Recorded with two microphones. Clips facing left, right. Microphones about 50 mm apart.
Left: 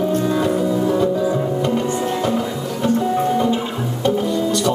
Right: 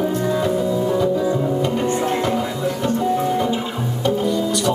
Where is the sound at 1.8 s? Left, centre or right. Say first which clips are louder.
Right 1 dB; right.